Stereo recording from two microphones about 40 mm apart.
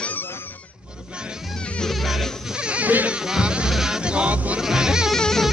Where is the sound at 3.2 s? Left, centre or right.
Centre.